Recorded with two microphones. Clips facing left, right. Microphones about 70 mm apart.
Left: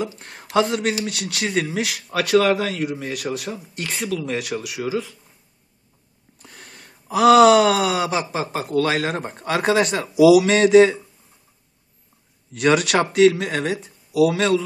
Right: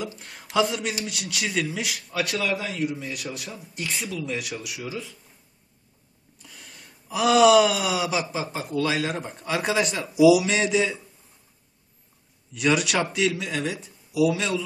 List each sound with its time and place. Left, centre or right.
0.0 s speech: left
2.1 s wail: left
4.3 s wail: left
4.8 s speech: left
6.4 s wail: left
12.5 s speech: left
14.1 s wail: left